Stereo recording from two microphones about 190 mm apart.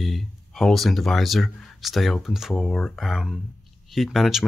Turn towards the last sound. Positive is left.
turn(degrees=0)  # may be behind; listen again after turning